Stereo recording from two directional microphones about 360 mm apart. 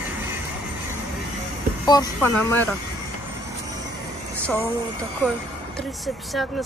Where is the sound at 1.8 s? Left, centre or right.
Centre.